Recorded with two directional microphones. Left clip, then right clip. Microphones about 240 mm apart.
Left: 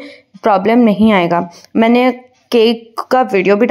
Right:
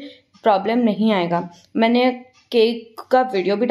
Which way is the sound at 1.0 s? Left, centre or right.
Left.